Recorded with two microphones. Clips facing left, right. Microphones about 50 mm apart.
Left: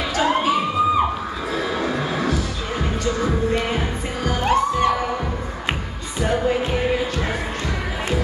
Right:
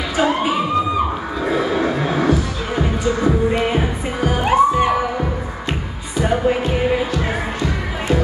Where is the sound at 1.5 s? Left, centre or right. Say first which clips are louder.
Right 5 dB; right.